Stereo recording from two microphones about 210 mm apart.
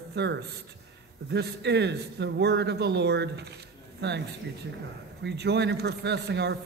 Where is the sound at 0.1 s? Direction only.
55° right (ahead or behind).